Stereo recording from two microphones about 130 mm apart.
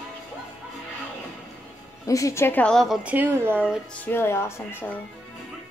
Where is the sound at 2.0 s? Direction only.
25° left (ahead or behind); by 3.0 s 5° left (ahead or behind).